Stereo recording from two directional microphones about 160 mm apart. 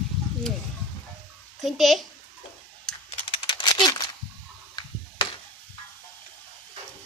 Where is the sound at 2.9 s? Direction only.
5° left (ahead or behind).